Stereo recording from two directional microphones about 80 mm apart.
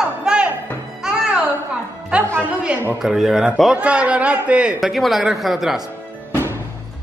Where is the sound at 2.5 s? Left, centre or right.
Centre.